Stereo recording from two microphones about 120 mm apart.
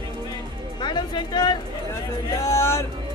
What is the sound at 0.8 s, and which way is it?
Speech, 40° left (ahead or behind).